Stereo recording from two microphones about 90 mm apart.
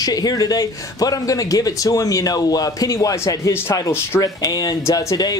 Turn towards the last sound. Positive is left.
turn(degrees=45)  # may be behind; listen again after turning